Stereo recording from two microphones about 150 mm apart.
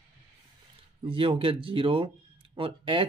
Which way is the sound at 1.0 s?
35° right (ahead or behind).